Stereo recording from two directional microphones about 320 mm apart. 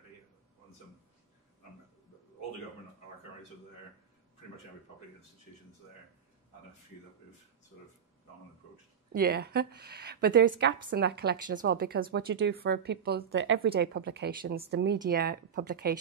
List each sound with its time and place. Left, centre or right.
9.1 s a woman's voice: right